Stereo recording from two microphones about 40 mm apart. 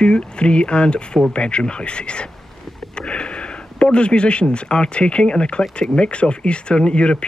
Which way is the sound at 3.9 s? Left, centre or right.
Left.